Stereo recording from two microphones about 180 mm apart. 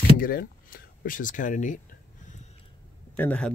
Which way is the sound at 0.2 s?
55° left (ahead or behind).